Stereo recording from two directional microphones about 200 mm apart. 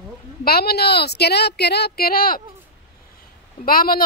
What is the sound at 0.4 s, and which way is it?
Speech, 50° left (ahead or behind).